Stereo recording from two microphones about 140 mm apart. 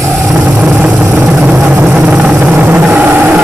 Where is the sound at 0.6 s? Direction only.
5° right (ahead or behind).